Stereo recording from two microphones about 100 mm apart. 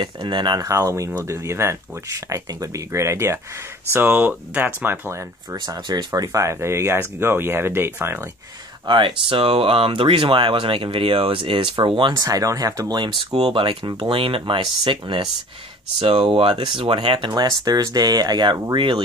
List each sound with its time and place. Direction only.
0.0 s speech: 50° right (ahead or behind)
0.6 s speech: 35° right (ahead or behind)
5.9 s speech: 45° right (ahead or behind); by 8.3 s 25° right (ahead or behind)
8.8 s speech: 55° right (ahead or behind)
12.1 s speech: 35° right (ahead or behind); by 17.3 s 55° right (ahead or behind)
17.3 s speech: 40° right (ahead or behind); by 19.0 s 55° right (ahead or behind)